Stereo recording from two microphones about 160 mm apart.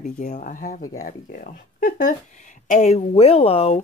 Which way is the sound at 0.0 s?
60° left (ahead or behind).